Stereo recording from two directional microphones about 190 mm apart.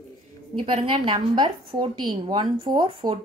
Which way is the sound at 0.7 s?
30° right (ahead or behind).